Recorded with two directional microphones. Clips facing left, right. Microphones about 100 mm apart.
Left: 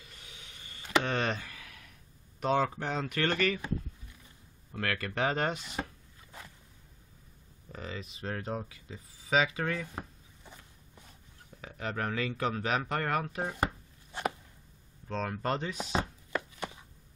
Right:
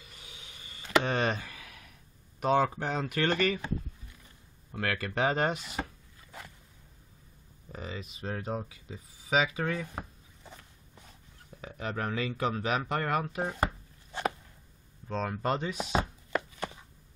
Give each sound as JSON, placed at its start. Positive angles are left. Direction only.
{"t": 0.1, "sound": "a sound", "side_deg": -10}
{"t": 1.1, "sound": "a sound", "side_deg": -20}
{"t": 2.4, "sound": "speech", "side_deg": -15}
{"t": 4.7, "sound": "speech", "side_deg": -20}
{"t": 7.7, "sound": "speech", "side_deg": -15}
{"t": 11.6, "sound": "speech", "side_deg": -15}
{"t": 15.0, "sound": "chopping", "side_deg": -15}